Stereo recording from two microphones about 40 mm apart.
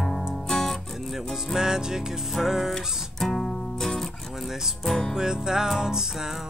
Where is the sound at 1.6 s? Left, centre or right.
Centre.